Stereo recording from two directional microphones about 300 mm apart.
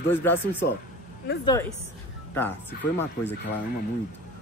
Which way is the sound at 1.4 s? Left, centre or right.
Centre.